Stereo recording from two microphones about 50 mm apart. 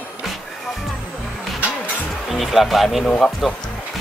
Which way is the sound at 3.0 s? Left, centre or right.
Centre.